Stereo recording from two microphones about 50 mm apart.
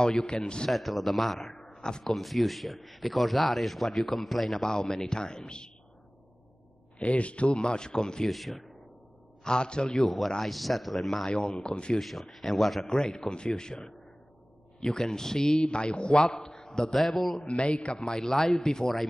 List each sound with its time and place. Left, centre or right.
0.0 s a man's voice: centre
0.7 s speech: centre
1.6 s a sound: centre
2.0 s speech: centre
7.0 s a man's voice: left
8.3 s speech: centre
9.4 s a man's voice: centre
10.0 s speech: centre
11.2 s a man's voice: centre
12.0 s a man's voice: centre
14.8 s a man's voice: centre
17.5 s a man's voice: left